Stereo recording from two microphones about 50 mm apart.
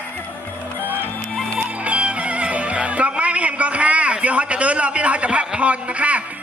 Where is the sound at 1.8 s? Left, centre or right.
Right.